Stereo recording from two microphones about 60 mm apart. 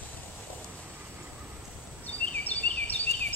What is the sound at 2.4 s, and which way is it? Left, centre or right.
Cricket, left.